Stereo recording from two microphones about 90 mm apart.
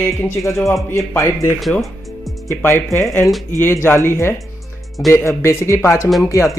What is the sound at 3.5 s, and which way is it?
Speech, 25° left (ahead or behind).